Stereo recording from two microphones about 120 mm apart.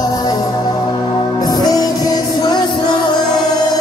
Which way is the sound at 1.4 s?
35° left (ahead or behind).